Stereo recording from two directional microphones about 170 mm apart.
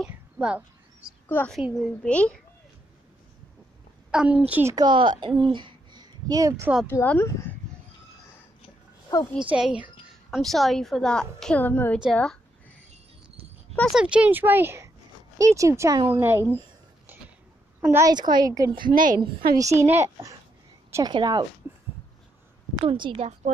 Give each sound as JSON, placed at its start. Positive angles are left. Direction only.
{"t": 0.0, "sound": "a sound", "side_deg": -10}
{"t": 1.3, "sound": "a woman's voice", "side_deg": 10}
{"t": 4.1, "sound": "speech", "side_deg": -5}
{"t": 4.7, "sound": "speech", "side_deg": -25}
{"t": 6.9, "sound": "speech", "side_deg": 15}
{"t": 9.4, "sound": "a woman's voice", "side_deg": -5}
{"t": 13.7, "sound": "speech", "side_deg": 0}
{"t": 17.7, "sound": "speech", "side_deg": -15}
{"t": 18.9, "sound": "a woman's voice", "side_deg": -55}
{"t": 19.5, "sound": "speech", "side_deg": -20}
{"t": 22.8, "sound": "speech", "side_deg": -30}